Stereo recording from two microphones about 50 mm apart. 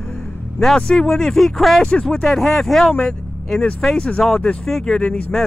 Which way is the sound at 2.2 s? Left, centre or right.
Centre.